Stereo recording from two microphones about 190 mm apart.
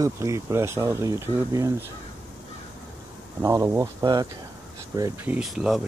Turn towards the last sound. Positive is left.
turn(degrees=0)  # may be behind; listen again after turning